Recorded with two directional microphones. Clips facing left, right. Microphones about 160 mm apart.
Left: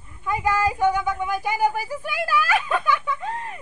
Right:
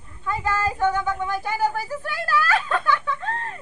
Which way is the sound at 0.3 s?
15° left (ahead or behind).